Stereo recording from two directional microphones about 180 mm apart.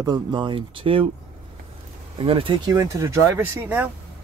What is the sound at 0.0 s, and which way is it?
Speech, 25° right (ahead or behind).